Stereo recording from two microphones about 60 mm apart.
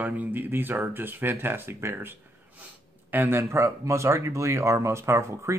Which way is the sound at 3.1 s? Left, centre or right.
Right.